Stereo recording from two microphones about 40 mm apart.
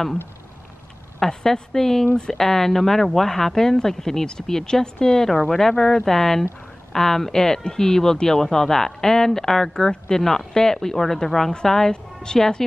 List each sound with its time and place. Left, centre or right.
1.2 s a woman's voice: centre